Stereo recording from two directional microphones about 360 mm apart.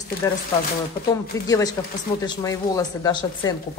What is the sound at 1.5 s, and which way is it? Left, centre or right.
A woman's voice, centre.